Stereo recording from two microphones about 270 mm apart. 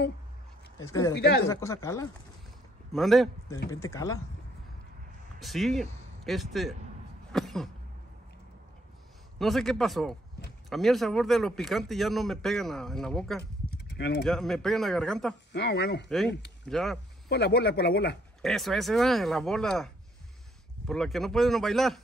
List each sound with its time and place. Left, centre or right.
0.7 s speech: centre
1.1 s speech: left
1.5 s speech: centre
2.9 s a man's voice: centre
3.4 s speech: centre
5.4 s speech: centre
7.3 s cough: centre
9.4 s a man's voice: centre
13.4 s a sound: left
14.2 s a man's voice: centre
15.5 s speech: left
16.6 s a man's voice: centre
17.3 s speech: left
18.4 s a man's voice: centre